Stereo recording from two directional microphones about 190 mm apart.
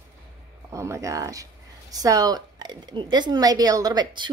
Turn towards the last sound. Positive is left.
turn(degrees=-20)  # may be behind; listen again after turning